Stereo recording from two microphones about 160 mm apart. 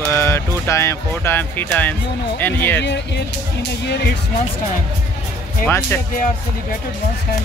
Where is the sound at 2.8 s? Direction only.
90° left.